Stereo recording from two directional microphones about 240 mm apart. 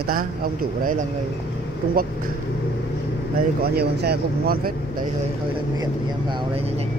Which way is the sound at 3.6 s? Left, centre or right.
Right.